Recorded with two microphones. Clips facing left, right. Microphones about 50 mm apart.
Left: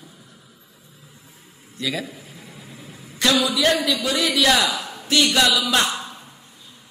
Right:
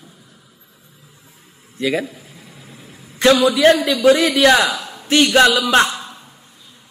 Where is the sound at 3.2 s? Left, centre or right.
Right.